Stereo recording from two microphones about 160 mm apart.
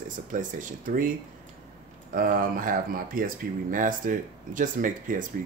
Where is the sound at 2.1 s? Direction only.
60° right (ahead or behind).